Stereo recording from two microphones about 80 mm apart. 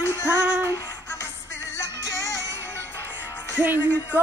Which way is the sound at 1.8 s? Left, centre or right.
Left.